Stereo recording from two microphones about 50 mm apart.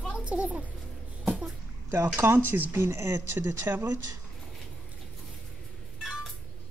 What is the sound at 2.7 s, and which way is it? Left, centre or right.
Speech, right.